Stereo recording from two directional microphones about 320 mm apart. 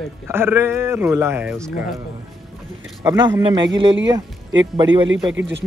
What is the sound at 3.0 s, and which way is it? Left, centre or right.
Speech, centre.